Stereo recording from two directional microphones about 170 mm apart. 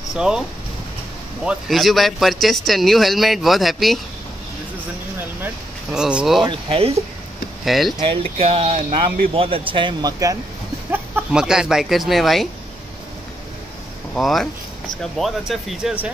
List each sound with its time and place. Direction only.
0.1 s speech: 5° right (ahead or behind)
1.4 s speech: 5° right (ahead or behind)
5.4 s speech: 5° right (ahead or behind)
6.4 s speech: 35° right (ahead or behind)
7.6 s speech: centre (ahead or behind)
8.0 s speech: 35° right (ahead or behind)
10.9 s speech: 10° right (ahead or behind)
14.1 s speech: centre (ahead or behind)